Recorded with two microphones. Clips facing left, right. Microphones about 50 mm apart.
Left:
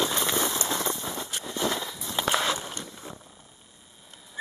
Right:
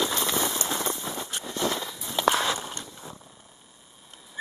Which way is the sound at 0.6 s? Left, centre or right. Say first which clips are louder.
Even; centre.